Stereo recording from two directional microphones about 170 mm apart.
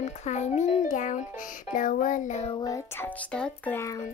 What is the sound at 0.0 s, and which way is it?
A child's voice, 40° left (ahead or behind).